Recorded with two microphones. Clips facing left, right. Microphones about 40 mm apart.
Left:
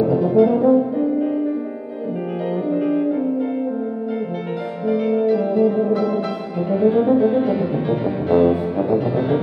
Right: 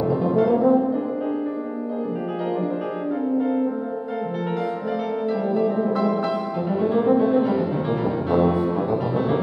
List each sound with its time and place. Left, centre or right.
0.0 s brass instrument: centre
0.6 s french horn: left
0.9 s music: centre
5.1 s music: centre